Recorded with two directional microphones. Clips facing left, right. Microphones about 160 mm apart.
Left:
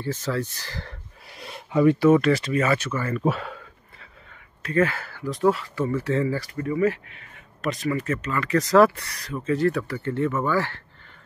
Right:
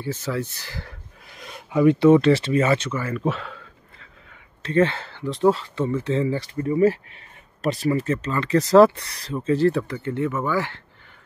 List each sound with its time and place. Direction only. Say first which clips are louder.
0.0 s speech: even; 15° right (ahead or behind)
4.6 s speech: right 3 dB; 25° right (ahead or behind)